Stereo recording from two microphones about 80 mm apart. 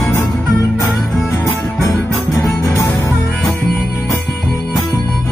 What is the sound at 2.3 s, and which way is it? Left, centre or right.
Music, left.